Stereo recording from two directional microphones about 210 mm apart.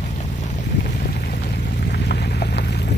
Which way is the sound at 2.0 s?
50° left (ahead or behind).